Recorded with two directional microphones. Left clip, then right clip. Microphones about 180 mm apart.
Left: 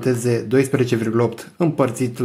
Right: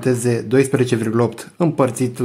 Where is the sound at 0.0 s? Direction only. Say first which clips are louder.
Right 1 dB; 15° right (ahead or behind).